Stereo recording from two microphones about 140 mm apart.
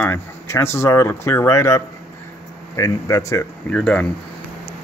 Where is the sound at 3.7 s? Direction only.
5° left (ahead or behind).